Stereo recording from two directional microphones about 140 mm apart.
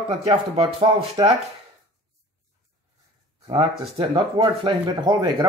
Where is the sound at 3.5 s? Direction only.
40° right (ahead or behind).